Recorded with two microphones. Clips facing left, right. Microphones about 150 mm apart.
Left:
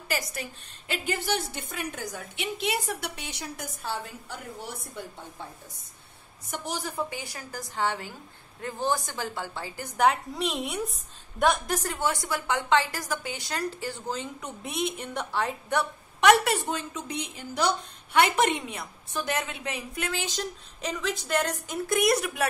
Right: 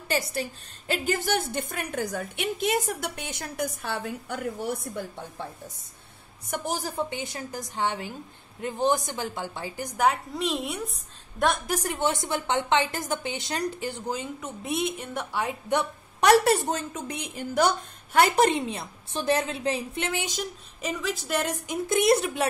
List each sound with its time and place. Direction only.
0.1 s a woman's voice: 30° right (ahead or behind); by 4.7 s 60° right (ahead or behind)
6.5 s a woman's voice: 45° right (ahead or behind)
7.0 s a woman's voice: 20° right (ahead or behind); by 11.7 s centre (ahead or behind)
11.7 s a woman's voice: 15° right (ahead or behind)
16.2 s a woman's voice: 40° right (ahead or behind); by 21.7 s 10° right (ahead or behind)
21.8 s a woman's voice: 25° right (ahead or behind)